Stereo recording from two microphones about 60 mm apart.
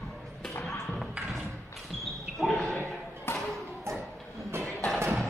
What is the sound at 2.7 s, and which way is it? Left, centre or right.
Slam, left.